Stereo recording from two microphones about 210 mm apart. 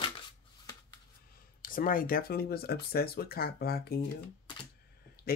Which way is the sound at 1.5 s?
40° left (ahead or behind).